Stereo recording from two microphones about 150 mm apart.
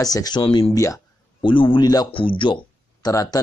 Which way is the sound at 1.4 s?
35° left (ahead or behind).